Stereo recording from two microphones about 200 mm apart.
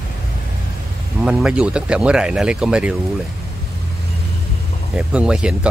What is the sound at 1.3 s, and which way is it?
Speech, 5° right (ahead or behind).